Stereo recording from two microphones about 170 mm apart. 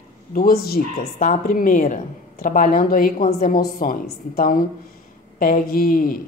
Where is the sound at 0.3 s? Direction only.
60° left (ahead or behind).